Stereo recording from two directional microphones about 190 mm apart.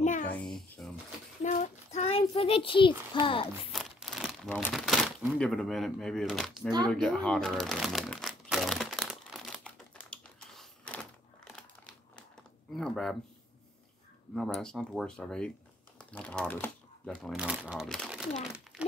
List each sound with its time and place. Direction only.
0.0 s babbling: 40° left (ahead or behind)
0.4 s a sound: 5° left (ahead or behind)
1.4 s a sound: 40° left (ahead or behind)
3.7 s tearing: centre (ahead or behind)
4.5 s speech: 10° left (ahead or behind)
4.7 s crumpling: centre (ahead or behind)
5.4 s speech: centre (ahead or behind)
6.9 s shuffling cards: 5° left (ahead or behind)
12.7 s speech: centre (ahead or behind)
14.3 s speech: centre (ahead or behind)